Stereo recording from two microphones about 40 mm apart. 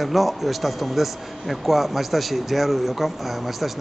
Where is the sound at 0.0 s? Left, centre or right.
Centre.